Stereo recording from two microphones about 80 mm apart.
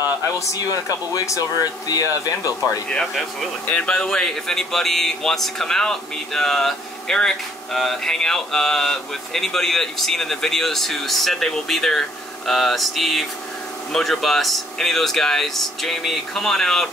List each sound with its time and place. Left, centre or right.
0.5 s speech: left
2.9 s speech: centre